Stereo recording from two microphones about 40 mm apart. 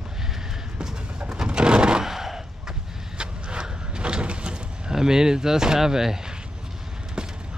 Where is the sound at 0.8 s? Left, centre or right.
Centre.